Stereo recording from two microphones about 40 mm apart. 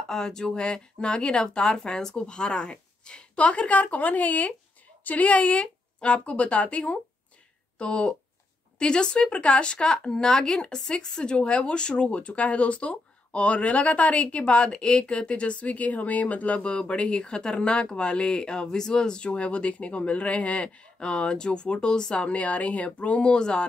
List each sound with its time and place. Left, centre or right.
0.1 s a woman's voice: centre